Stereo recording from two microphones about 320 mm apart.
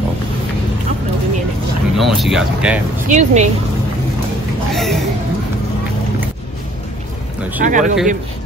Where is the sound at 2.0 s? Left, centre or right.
Centre.